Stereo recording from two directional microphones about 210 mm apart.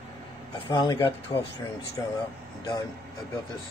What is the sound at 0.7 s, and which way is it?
Speech, 20° left (ahead or behind).